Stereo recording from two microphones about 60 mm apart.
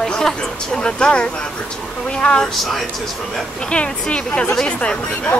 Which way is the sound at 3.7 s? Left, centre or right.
Centre.